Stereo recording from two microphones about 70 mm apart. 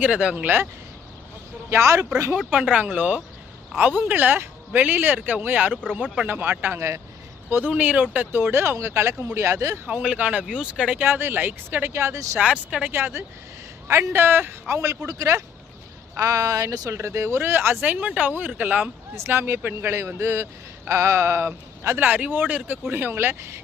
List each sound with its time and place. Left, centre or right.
0.0 s speech: centre
1.7 s a man's voice: right
2.3 s speech: centre; by 7.7 s right
7.7 s a man's voice: centre; by 9.8 s right
9.8 s speech: centre
11.0 s a man's voice: right
12.4 s speech: centre
12.8 s a man's voice: right
15.0 s speech: right
18.0 s speech: centre
19.1 s a man's voice: right